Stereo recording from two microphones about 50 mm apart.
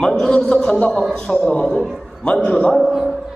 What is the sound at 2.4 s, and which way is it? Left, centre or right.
Speech, left.